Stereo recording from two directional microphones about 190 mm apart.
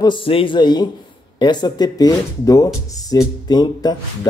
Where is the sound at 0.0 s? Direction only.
25° left (ahead or behind).